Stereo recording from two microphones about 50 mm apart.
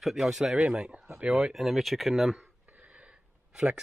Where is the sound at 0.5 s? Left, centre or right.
Centre.